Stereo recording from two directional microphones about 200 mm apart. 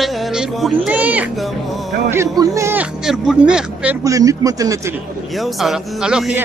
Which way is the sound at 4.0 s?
15° right (ahead or behind).